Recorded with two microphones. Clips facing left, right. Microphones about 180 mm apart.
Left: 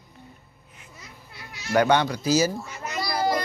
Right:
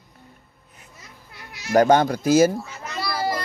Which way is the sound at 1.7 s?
40° right (ahead or behind).